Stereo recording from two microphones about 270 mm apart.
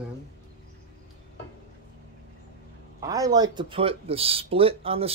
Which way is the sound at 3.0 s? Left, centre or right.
Centre.